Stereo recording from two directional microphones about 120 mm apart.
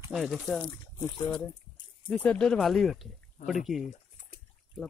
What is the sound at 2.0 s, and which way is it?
Speech, 10° left (ahead or behind).